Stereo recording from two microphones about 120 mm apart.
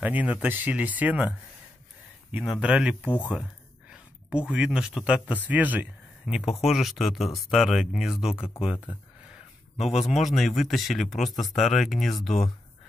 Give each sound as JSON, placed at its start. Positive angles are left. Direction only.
{"t": 0.0, "sound": "speech", "side_deg": -15}
{"t": 2.3, "sound": "speech", "side_deg": -5}
{"t": 3.1, "sound": "speech", "side_deg": 15}
{"t": 3.9, "sound": "speech", "side_deg": -10}
{"t": 10.2, "sound": "speech", "side_deg": 0}